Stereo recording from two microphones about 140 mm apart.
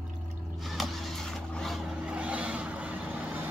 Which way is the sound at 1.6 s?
5° right (ahead or behind).